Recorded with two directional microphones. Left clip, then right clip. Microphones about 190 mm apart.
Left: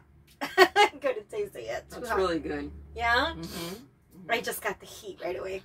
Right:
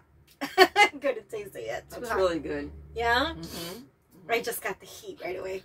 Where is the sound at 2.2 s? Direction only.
20° right (ahead or behind).